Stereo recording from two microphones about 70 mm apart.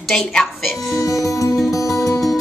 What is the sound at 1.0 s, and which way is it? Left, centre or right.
Music, left.